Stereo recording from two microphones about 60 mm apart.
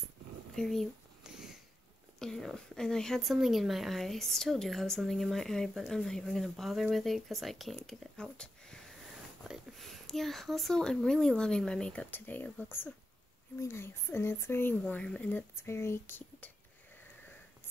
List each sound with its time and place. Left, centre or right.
0.6 s speech: centre
1.2 s a sound: centre
2.1 s speech: centre
6.5 s speech: centre
7.8 s speech: centre
9.4 s speech: centre
12.1 s speech: left